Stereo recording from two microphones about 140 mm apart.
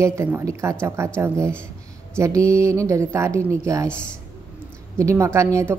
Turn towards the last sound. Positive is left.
turn(degrees=-20)  # may be behind; listen again after turning